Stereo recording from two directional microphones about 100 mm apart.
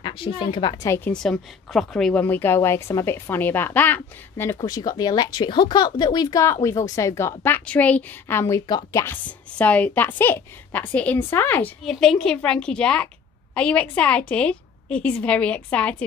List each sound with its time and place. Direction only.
0.0 s a woman's voice: 60° left (ahead or behind)
0.8 s a woman's voice: 25° left (ahead or behind)
1.2 s a woman's voice: 5° left (ahead or behind)
2.1 s a woman's voice: 20° left (ahead or behind)
4.6 s speech: 40° left (ahead or behind)
6.4 s a woman's voice: 30° left (ahead or behind)
8.6 s speech: 45° left (ahead or behind)
9.0 s a woman's voice: 15° left (ahead or behind)
11.8 s a woman's voice: 5° left (ahead or behind)